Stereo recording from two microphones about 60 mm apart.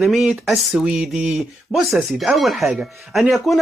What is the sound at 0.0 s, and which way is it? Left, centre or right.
Speech, centre.